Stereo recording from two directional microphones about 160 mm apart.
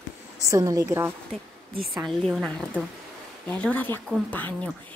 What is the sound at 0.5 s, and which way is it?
Speech, 20° right (ahead or behind).